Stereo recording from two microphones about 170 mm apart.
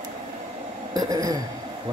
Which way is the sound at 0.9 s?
20° right (ahead or behind).